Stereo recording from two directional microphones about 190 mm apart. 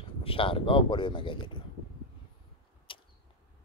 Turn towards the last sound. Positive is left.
turn(degrees=25)  # may be behind; listen again after turning